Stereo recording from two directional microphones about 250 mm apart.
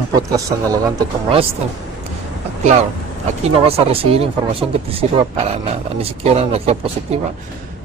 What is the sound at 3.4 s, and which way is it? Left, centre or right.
Speech, right.